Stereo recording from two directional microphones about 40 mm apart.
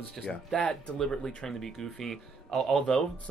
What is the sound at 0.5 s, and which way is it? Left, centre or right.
Speech, left.